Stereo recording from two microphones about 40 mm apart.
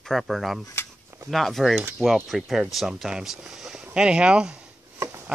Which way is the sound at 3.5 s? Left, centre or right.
Centre.